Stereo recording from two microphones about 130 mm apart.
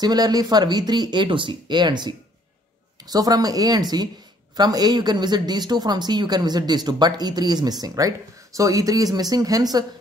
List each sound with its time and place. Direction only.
0.0 s speech: 30° right (ahead or behind)